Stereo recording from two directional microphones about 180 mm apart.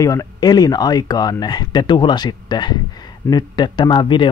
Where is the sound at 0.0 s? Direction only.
20° left (ahead or behind).